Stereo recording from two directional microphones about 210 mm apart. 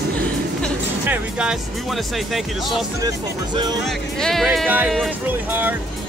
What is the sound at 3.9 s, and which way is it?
Speech, centre (ahead or behind).